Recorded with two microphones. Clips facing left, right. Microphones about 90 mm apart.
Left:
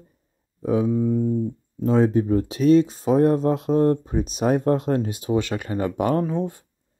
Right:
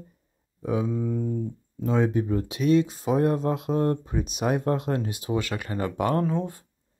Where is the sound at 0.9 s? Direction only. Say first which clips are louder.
Left 6 dB; 15° left (ahead or behind).